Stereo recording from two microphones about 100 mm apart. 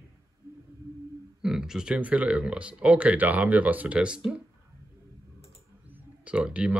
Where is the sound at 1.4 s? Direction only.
5° right (ahead or behind).